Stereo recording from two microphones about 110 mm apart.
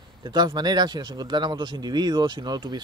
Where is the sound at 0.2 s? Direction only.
40° right (ahead or behind).